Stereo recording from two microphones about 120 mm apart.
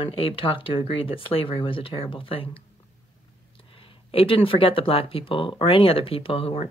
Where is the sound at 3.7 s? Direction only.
50° left (ahead or behind).